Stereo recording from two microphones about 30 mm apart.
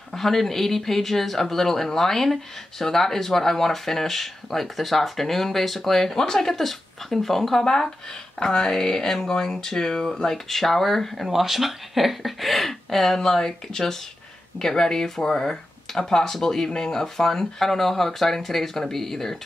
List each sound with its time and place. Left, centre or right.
0.1 s speech: centre
6.1 s speech: centre
11.2 s speech: centre